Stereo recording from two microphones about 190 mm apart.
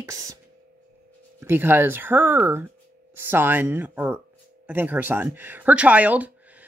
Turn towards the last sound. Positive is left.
turn(degrees=-10)  # may be behind; listen again after turning